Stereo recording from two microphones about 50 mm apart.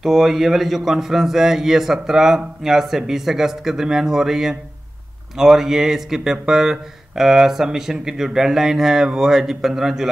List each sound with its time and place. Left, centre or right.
0.0 s a man's voice: centre